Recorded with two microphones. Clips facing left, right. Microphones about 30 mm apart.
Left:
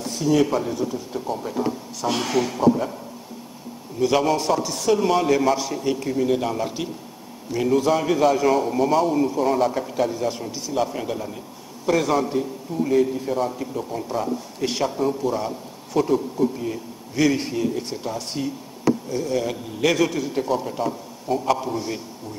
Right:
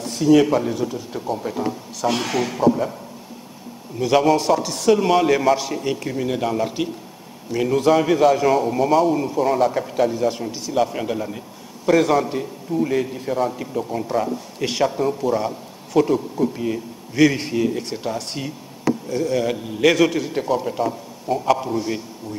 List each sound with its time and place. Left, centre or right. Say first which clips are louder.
0.1 s a man's voice: right 5 dB; centre
4.0 s a man's voice: right 3 dB; centre
16.5 s a man's voice: right 4 dB; centre